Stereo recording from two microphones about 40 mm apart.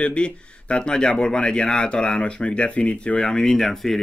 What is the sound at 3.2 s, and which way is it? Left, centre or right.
Speech, centre.